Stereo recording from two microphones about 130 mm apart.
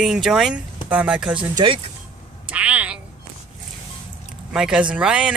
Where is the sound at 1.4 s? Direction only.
40° right (ahead or behind).